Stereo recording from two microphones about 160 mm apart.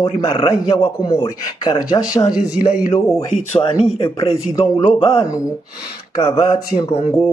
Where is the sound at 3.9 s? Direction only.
35° left (ahead or behind).